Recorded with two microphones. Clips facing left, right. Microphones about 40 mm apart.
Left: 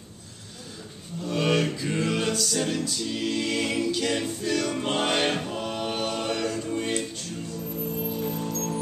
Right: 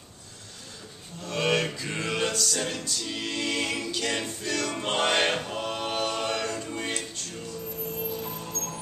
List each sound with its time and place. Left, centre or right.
1.2 s music: centre
6.9 s music: centre